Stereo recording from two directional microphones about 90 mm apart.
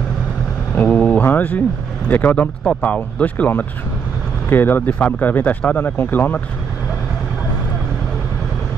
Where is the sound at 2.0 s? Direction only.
20° left (ahead or behind).